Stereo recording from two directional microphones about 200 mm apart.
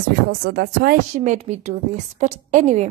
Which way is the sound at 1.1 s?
35° right (ahead or behind).